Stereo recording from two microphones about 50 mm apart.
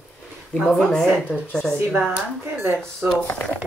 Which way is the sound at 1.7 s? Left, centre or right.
Right.